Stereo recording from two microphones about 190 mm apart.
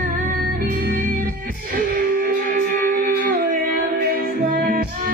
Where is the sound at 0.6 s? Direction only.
50° right (ahead or behind).